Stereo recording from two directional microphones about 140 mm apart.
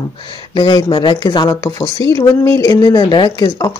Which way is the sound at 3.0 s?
35° left (ahead or behind).